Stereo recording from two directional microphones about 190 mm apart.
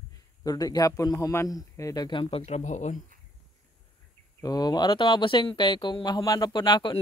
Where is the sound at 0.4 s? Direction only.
20° left (ahead or behind); by 3.0 s 40° left (ahead or behind).